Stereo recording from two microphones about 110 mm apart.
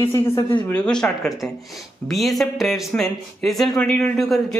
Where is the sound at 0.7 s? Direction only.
10° left (ahead or behind).